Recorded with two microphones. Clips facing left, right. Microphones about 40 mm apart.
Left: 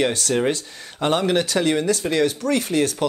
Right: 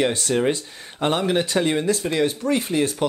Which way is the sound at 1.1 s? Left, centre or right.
Centre.